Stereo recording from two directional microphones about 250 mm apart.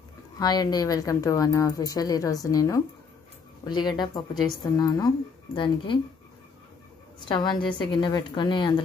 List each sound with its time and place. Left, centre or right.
0.4 s speech: centre
7.2 s speech: centre